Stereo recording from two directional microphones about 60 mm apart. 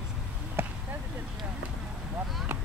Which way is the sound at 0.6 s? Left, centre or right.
Right.